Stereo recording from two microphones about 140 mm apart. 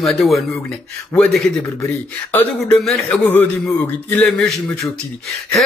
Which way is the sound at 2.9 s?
Centre (ahead or behind).